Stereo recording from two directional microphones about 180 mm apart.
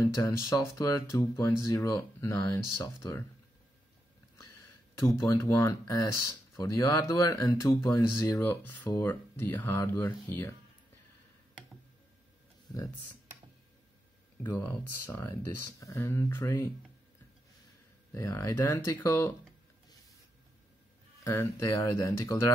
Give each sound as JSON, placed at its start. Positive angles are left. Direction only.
{"t": 0.0, "sound": "speech", "side_deg": 15}
{"t": 5.2, "sound": "speech", "side_deg": 15}
{"t": 14.4, "sound": "speech", "side_deg": 10}
{"t": 18.1, "sound": "speech", "side_deg": 15}
{"t": 21.2, "sound": "speech", "side_deg": 15}